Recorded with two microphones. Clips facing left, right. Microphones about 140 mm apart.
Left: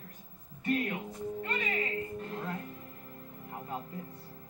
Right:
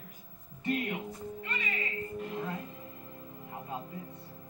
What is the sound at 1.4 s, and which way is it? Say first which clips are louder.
Music: left 5 dB; 50° left (ahead or behind).